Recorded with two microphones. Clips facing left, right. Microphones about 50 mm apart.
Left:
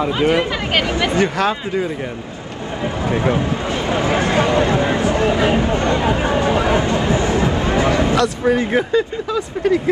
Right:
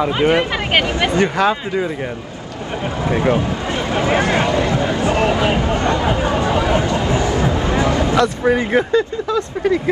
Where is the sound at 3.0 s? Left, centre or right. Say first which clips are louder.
Right 2 dB; right.